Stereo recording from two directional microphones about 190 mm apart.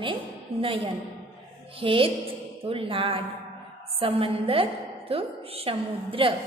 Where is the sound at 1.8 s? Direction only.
25° right (ahead or behind).